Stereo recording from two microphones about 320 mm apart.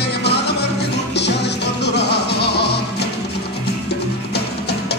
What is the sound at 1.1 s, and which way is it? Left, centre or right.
Music, left.